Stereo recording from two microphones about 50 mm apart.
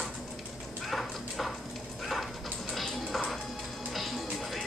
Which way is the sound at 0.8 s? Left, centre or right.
Centre.